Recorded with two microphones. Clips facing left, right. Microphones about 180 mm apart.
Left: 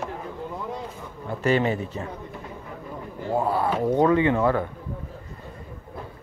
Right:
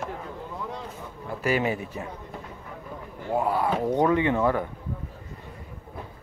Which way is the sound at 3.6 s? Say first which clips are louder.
Left 4 dB; 15° right (ahead or behind).